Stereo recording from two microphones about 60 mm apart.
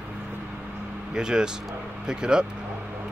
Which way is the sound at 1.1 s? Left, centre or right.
Centre.